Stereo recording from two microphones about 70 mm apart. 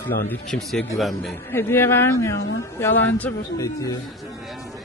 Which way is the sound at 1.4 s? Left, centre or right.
Left.